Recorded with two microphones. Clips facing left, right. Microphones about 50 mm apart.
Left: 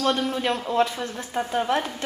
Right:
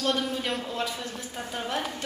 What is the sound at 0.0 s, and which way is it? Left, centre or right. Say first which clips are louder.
A woman's voice: left 4 dB; left.